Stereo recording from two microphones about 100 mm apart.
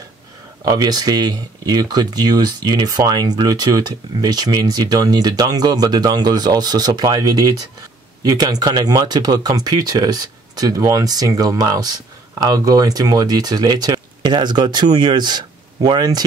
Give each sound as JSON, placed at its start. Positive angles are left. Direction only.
{"t": 0.7, "sound": "speech", "side_deg": -40}